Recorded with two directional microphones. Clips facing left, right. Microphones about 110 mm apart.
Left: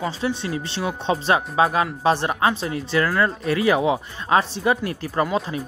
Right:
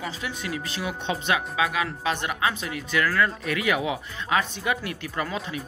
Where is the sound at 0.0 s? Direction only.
30° left (ahead or behind).